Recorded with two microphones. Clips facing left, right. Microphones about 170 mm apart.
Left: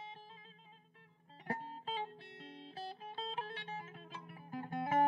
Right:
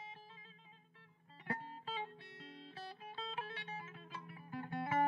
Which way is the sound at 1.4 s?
35° left (ahead or behind).